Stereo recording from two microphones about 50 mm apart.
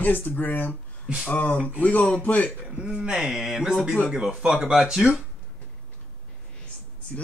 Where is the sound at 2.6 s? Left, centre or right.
Right.